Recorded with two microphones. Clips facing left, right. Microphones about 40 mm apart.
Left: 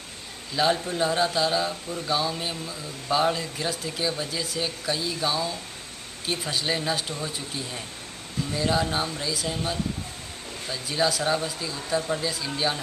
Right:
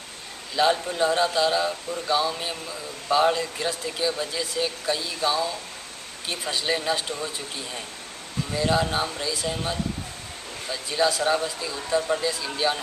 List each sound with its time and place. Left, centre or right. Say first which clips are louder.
0.6 s speech: right 2 dB; centre
8.5 s speech: right 2 dB; centre